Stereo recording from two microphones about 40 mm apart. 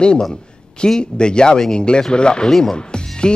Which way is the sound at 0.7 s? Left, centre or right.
Centre.